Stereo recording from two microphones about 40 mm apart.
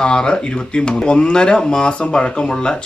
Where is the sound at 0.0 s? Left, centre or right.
Left.